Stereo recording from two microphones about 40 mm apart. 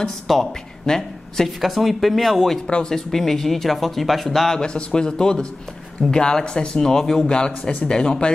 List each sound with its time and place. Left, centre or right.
0.0 s speech: centre
1.6 s speech: centre
4.6 s speech: left
7.2 s speech: left